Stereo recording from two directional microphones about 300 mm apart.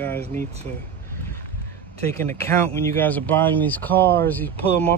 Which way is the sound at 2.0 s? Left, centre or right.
Centre.